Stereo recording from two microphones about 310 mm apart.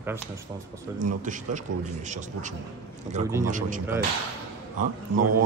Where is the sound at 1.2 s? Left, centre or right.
Right.